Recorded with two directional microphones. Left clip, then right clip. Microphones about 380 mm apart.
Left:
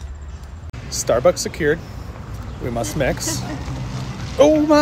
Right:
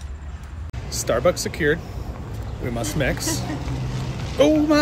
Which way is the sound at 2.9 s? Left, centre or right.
Centre.